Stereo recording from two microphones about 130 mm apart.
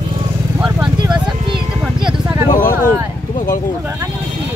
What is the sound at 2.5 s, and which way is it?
Speech, 90° left.